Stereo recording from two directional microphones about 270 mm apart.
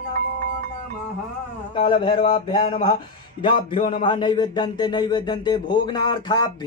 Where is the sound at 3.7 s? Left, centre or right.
Centre.